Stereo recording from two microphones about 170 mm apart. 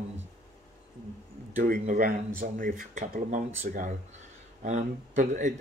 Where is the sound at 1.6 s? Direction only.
55° right (ahead or behind).